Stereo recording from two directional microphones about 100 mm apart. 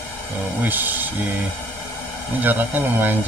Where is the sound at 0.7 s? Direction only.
20° right (ahead or behind).